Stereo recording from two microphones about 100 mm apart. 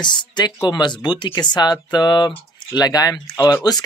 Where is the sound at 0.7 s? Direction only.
45° left (ahead or behind).